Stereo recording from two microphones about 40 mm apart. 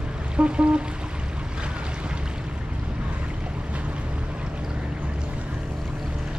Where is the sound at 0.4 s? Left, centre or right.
Right.